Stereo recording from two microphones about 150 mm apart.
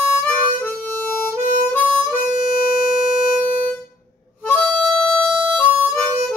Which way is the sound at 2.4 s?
65° left (ahead or behind).